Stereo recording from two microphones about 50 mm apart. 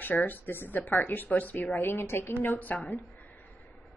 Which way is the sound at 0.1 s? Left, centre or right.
Left.